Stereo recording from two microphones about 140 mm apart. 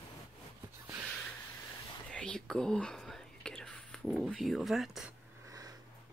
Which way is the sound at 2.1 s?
5° left (ahead or behind).